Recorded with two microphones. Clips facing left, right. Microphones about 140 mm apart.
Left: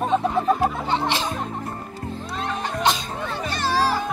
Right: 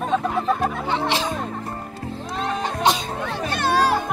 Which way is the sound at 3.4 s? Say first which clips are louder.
Right 3 dB; 55° right (ahead or behind).